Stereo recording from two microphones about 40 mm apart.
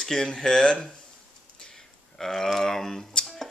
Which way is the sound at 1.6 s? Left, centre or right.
Centre.